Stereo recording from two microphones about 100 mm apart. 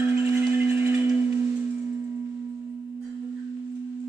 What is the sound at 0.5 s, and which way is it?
Singing bowl, 20° right (ahead or behind).